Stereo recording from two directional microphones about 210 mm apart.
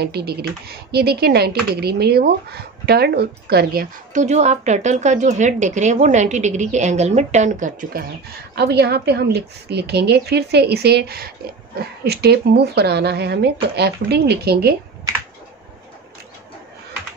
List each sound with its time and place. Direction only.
0.0 s speech: 50° right (ahead or behind)
8.5 s a woman's voice: 50° right (ahead or behind)